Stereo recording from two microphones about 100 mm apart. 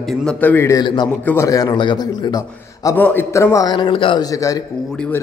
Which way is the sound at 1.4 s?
35° left (ahead or behind).